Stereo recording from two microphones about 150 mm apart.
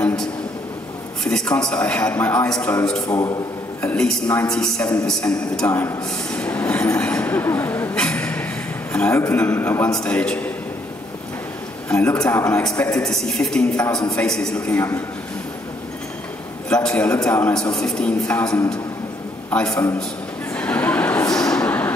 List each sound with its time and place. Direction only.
0.0 s a sound: 5° left (ahead or behind)
1.7 s a man's voice: 10° left (ahead or behind)
3.1 s speech: 25° left (ahead or behind)
3.8 s a man's voice: 5° left (ahead or behind)
6.7 s a sound: 10° left (ahead or behind)
9.1 s a man's voice: 20° left (ahead or behind)
11.9 s a man's voice: 10° left (ahead or behind)
12.2 s speech: 20° left (ahead or behind)
12.4 s a man's voice: 10° left (ahead or behind)
16.6 s a man's voice: 5° left (ahead or behind)
19.7 s speech: 20° left (ahead or behind)
20.5 s a sound: 10° left (ahead or behind)
21.3 s vehicle: 5° left (ahead or behind)